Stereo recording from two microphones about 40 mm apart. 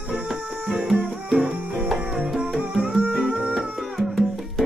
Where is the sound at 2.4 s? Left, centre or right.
Right.